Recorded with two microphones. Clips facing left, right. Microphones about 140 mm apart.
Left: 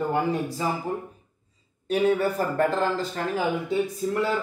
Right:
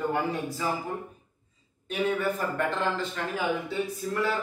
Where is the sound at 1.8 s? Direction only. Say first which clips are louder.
Left 5 dB; 35° left (ahead or behind).